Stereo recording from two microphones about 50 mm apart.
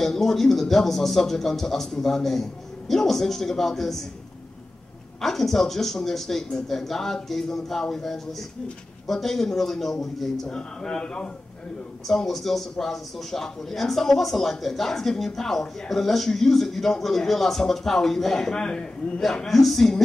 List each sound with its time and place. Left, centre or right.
0.0 s a man's voice: centre
5.2 s a man's voice: centre
12.1 s a man's voice: centre